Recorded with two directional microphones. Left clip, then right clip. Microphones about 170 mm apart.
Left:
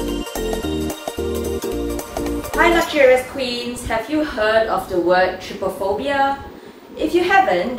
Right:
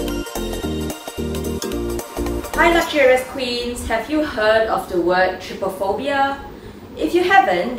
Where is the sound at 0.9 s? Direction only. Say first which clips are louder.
Left 3 dB; centre (ahead or behind).